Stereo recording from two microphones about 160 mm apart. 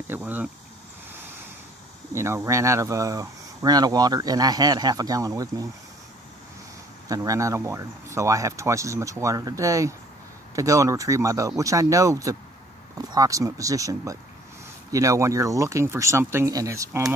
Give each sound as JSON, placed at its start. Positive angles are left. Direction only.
{"t": 0.1, "sound": "speech", "side_deg": -10}
{"t": 2.1, "sound": "speech", "side_deg": -15}
{"t": 7.1, "sound": "speech", "side_deg": -20}